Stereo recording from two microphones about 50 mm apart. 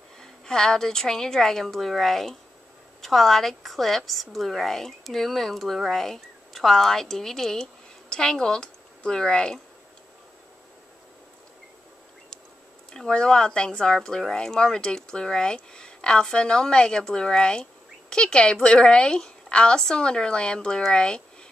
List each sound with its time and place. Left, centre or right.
0.2 s a woman's voice: centre
12.9 s speech: centre